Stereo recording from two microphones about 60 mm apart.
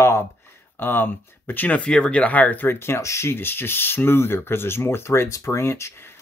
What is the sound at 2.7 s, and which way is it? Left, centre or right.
Speech, left.